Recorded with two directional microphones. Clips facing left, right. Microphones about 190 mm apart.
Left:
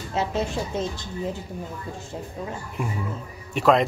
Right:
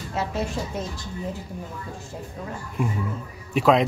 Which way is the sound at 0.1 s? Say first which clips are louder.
Left 2 dB; 20° left (ahead or behind).